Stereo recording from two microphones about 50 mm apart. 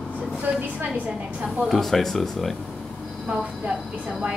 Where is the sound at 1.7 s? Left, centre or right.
Centre.